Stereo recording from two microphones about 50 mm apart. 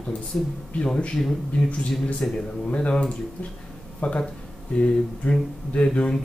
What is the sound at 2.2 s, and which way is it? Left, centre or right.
Speech, centre.